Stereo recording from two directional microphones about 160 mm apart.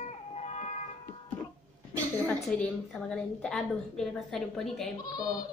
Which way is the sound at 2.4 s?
5° left (ahead or behind).